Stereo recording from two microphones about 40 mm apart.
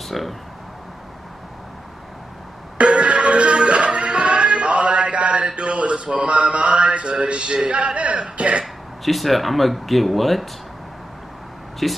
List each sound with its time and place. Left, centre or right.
0.1 s speech: centre
2.8 s music: right
5.6 s a sound: right
9.0 s speech: centre
11.8 s speech: centre